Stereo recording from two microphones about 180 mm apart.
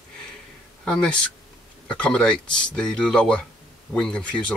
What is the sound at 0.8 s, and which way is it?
Speech, 5° left (ahead or behind).